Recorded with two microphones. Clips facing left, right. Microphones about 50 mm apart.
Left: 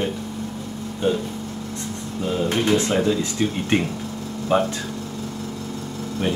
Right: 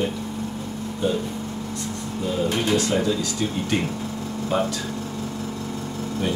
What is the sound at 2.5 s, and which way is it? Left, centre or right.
Speech, left.